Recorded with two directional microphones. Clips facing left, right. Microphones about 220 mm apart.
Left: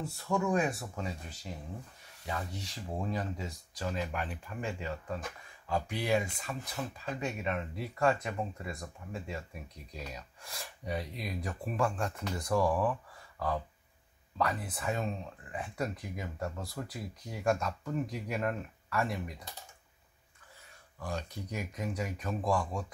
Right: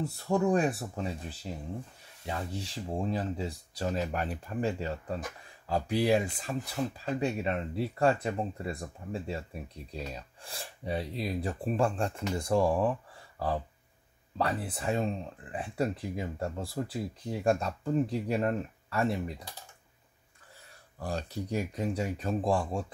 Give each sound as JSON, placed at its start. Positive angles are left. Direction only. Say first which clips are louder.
{"t": 0.3, "sound": "speech", "louder": "right 4 dB", "side_deg": -35}
{"t": 14.4, "sound": "speech", "louder": "right 2 dB", "side_deg": -30}
{"t": 21.0, "sound": "speech", "louder": "right 4 dB", "side_deg": -35}